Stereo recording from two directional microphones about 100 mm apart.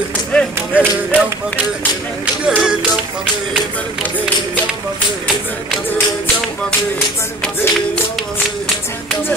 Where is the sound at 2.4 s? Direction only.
5° right (ahead or behind).